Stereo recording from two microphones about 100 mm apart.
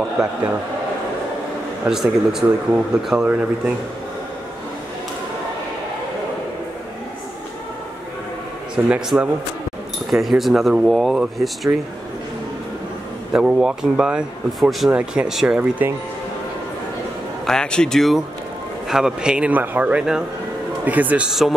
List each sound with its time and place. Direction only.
0.2 s speech: 5° right (ahead or behind)
1.9 s speech: 5° right (ahead or behind)
8.7 s speech: 10° right (ahead or behind)
10.1 s speech: centre (ahead or behind)
13.3 s speech: 10° right (ahead or behind)
14.9 s speech: 10° right (ahead or behind)
17.5 s speech: 10° left (ahead or behind); by 21.3 s 15° right (ahead or behind)
21.3 s speech: centre (ahead or behind)